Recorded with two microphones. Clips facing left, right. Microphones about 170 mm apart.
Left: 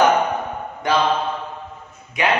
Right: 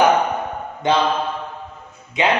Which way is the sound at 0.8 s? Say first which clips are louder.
Right 2 dB; 20° right (ahead or behind).